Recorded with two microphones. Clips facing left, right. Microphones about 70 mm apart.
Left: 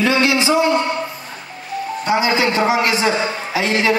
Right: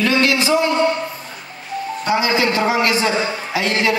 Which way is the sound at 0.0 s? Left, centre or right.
Centre.